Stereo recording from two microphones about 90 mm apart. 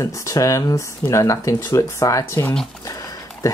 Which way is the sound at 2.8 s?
35° left (ahead or behind).